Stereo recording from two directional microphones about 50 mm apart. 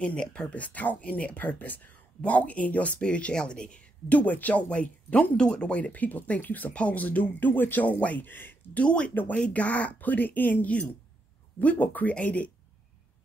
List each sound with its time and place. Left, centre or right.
0.0 s speech: left
4.1 s speech: left
7.8 s speech: left
8.7 s speech: left